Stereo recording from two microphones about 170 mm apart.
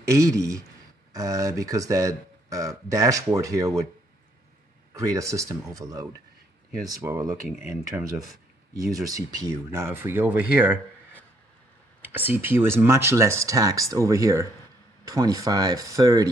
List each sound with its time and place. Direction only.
0.0 s speech: 20° right (ahead or behind)
4.9 s speech: 20° right (ahead or behind)
12.0 s speech: 10° right (ahead or behind)